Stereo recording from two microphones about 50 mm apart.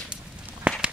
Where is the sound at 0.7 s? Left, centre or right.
Right.